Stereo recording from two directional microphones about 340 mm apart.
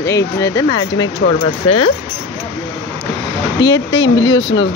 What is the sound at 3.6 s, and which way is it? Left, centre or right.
Speech, left.